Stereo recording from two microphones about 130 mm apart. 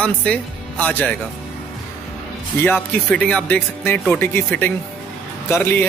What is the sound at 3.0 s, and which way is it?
Speech, 10° left (ahead or behind).